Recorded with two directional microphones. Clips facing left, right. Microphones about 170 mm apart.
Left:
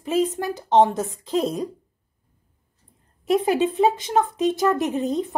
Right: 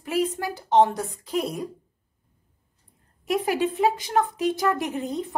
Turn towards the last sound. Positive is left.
turn(degrees=20)  # may be behind; listen again after turning